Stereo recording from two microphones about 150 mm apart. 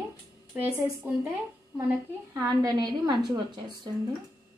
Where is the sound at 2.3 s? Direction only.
25° right (ahead or behind).